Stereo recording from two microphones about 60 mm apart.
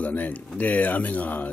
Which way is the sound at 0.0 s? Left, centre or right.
Left.